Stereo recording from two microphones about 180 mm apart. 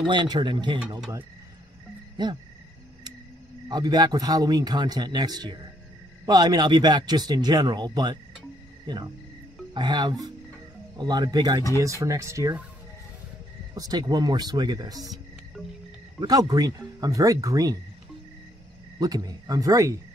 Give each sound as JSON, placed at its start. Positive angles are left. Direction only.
{"t": 0.0, "sound": "speech", "side_deg": -25}
{"t": 2.2, "sound": "speech", "side_deg": -25}
{"t": 3.6, "sound": "speech", "side_deg": -20}
{"t": 13.7, "sound": "speech", "side_deg": -20}
{"t": 16.2, "sound": "speech", "side_deg": -20}
{"t": 18.9, "sound": "speech", "side_deg": -20}